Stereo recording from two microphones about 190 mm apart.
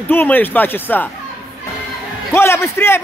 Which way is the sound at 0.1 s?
10° left (ahead or behind).